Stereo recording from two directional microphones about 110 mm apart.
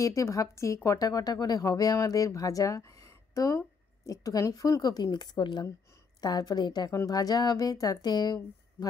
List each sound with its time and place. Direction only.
0.0 s speech: 30° left (ahead or behind)